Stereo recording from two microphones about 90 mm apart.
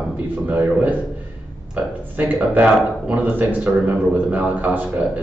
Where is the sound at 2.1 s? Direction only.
20° right (ahead or behind).